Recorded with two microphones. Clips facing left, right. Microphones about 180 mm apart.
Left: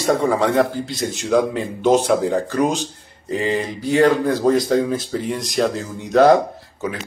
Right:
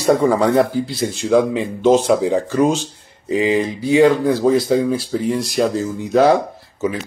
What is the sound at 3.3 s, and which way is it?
Speech, centre (ahead or behind).